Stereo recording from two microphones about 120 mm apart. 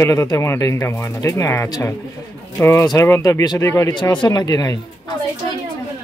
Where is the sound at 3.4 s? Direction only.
35° left (ahead or behind).